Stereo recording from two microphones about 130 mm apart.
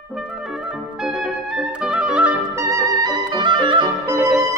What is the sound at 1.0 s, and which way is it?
Clarinet, 5° right (ahead or behind).